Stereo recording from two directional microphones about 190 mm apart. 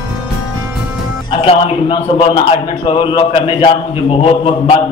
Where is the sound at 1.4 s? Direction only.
30° left (ahead or behind).